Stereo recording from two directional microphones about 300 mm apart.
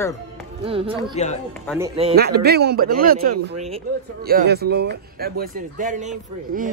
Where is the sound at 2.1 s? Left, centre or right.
Right.